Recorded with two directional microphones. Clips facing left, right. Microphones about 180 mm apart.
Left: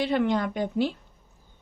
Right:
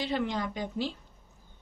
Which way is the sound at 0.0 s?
60° left (ahead or behind).